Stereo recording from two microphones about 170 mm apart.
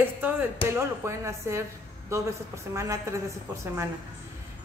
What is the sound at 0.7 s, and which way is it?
A woman's voice, 15° right (ahead or behind).